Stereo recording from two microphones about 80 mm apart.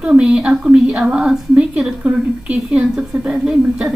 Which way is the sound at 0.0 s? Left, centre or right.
Centre.